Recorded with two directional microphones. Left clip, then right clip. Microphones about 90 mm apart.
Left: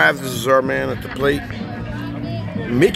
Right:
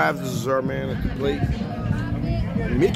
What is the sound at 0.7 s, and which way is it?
Speech, 85° left.